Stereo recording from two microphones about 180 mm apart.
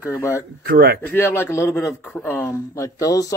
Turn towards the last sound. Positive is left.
turn(degrees=20)  # may be behind; listen again after turning